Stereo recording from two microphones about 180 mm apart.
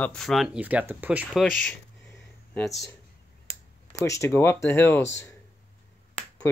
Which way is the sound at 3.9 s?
15° left (ahead or behind).